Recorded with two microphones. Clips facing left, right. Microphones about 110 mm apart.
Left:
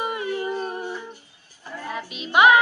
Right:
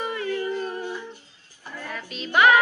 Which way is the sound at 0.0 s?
20° left (ahead or behind).